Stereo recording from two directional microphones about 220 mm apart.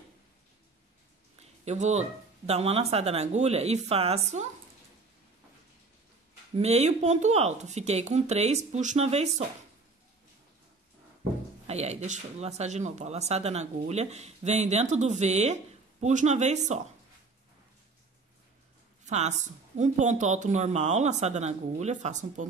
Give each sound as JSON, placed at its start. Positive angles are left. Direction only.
{"t": 1.6, "sound": "speech", "side_deg": -30}
{"t": 6.5, "sound": "speech", "side_deg": -30}
{"t": 11.6, "sound": "speech", "side_deg": -30}
{"t": 19.0, "sound": "speech", "side_deg": -30}